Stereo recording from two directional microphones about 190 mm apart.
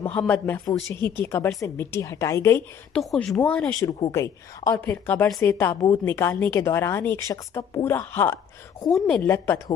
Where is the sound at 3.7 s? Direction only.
25° left (ahead or behind); by 9.2 s 5° left (ahead or behind).